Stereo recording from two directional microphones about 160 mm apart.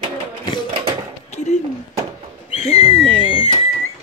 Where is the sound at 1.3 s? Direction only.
45° left (ahead or behind).